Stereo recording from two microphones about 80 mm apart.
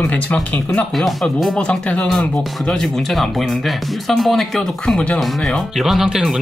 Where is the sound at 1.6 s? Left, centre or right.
Centre.